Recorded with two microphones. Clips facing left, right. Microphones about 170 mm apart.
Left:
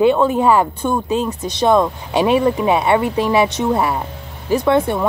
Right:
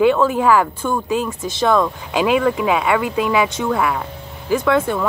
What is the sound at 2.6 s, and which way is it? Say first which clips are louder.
Speech: left 2 dB; 30° left (ahead or behind).